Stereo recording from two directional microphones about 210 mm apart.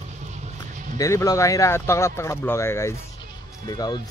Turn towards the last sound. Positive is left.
turn(degrees=20)  # may be behind; listen again after turning